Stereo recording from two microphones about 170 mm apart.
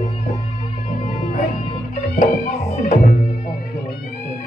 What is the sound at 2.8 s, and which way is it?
Music, 55° left (ahead or behind).